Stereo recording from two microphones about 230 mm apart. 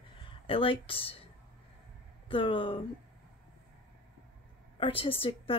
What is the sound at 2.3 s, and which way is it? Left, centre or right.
Speech, left.